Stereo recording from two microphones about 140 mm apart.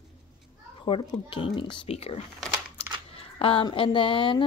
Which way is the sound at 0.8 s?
35° left (ahead or behind).